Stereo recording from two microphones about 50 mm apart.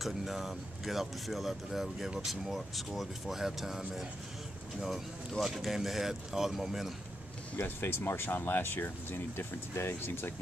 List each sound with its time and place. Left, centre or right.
0.0 s speech: centre
7.5 s speech: left